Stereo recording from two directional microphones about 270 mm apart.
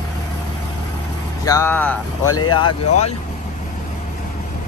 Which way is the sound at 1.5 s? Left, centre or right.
Centre.